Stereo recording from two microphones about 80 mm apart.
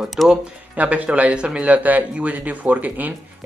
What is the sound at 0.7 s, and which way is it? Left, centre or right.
Speech, centre.